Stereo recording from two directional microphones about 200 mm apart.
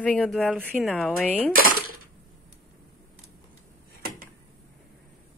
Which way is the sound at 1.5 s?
45° right (ahead or behind).